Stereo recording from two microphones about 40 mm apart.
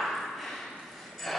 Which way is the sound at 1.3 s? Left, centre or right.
Centre.